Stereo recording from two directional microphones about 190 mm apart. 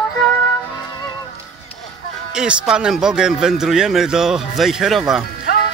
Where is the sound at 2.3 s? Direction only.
5° right (ahead or behind).